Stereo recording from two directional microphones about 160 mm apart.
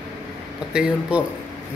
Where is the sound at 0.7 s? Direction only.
10° right (ahead or behind).